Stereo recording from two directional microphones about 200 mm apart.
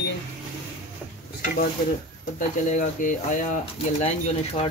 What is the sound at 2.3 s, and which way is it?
Speech, 40° left (ahead or behind).